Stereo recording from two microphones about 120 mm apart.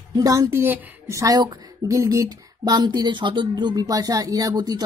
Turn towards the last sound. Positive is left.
turn(degrees=-35)  # may be behind; listen again after turning